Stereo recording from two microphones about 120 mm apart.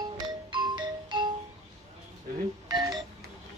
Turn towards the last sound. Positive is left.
turn(degrees=-35)  # may be behind; listen again after turning